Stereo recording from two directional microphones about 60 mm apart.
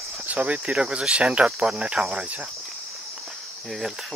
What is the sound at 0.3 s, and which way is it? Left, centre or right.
Speech, right.